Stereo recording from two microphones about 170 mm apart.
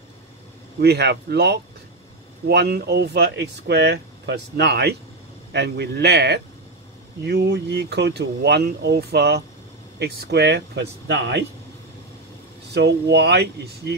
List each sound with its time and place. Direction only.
0.7 s speech: 75° right (ahead or behind)
12.7 s speech: 80° right